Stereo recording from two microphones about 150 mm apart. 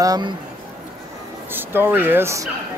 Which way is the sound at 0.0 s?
25° right (ahead or behind).